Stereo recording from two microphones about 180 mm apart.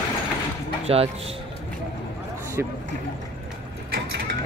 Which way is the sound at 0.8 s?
35° right (ahead or behind).